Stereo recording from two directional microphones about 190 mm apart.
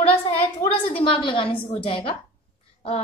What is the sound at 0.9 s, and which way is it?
A woman's voice, 30° left (ahead or behind).